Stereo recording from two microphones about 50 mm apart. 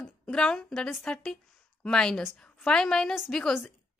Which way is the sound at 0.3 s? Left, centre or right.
Centre.